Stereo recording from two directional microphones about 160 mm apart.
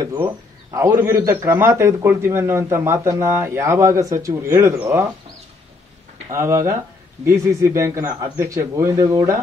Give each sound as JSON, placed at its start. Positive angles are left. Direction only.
{"t": 0.0, "sound": "a man's voice", "side_deg": -20}
{"t": 6.3, "sound": "a man's voice", "side_deg": -15}